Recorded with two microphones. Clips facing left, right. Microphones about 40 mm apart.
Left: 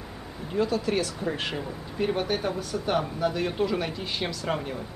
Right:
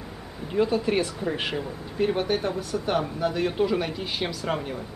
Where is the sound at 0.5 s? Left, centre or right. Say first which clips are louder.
Right 3 dB; centre.